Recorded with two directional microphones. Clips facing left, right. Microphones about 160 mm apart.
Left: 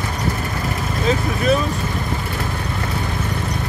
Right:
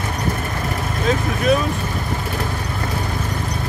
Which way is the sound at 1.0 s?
Centre (ahead or behind).